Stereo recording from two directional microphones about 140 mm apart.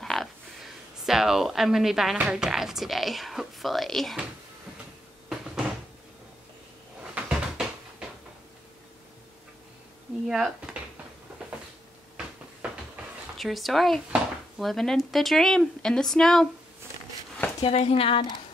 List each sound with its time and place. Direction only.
0.0 s a sound: centre (ahead or behind)
1.0 s speech: centre (ahead or behind)
5.3 s cupboard open or close: 5° right (ahead or behind)
7.0 s cupboard open or close: 5° right (ahead or behind)
10.2 s speech: 5° right (ahead or behind)
13.4 s speech: centre (ahead or behind)
17.6 s speech: 45° left (ahead or behind)